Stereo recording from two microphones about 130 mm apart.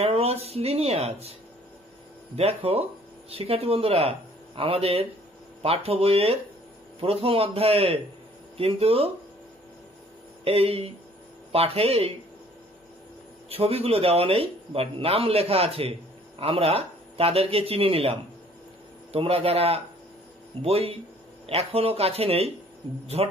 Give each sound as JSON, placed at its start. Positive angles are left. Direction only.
{"t": 0.0, "sound": "speech", "side_deg": -50}
{"t": 2.3, "sound": "speech", "side_deg": -50}
{"t": 10.4, "sound": "speech", "side_deg": -50}
{"t": 13.5, "sound": "speech", "side_deg": -50}
{"t": 19.1, "sound": "speech", "side_deg": -45}